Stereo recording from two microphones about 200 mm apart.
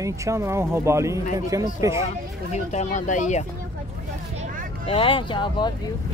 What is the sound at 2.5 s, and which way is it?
Speech, 35° left (ahead or behind).